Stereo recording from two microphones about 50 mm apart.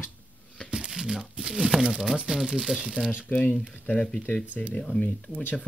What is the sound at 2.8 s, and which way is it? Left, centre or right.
Speech, centre.